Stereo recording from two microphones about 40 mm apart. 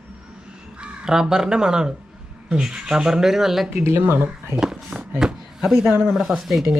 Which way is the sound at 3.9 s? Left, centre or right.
Right.